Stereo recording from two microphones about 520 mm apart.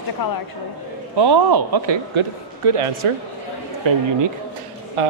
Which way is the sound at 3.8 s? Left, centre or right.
Right.